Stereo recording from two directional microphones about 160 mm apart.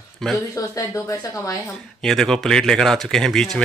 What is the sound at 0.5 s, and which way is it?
A man's voice, 20° left (ahead or behind).